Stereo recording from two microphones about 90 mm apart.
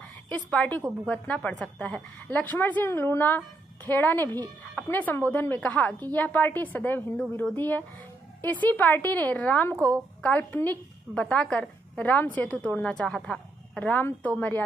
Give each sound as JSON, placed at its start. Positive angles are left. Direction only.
{"t": 0.3, "sound": "a woman's voice", "side_deg": 15}